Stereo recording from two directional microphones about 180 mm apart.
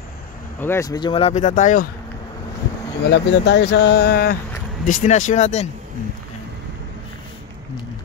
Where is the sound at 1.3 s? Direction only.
45° left (ahead or behind).